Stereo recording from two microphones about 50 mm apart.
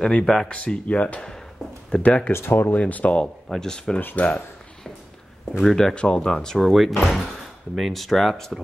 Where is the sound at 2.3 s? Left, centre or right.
Left.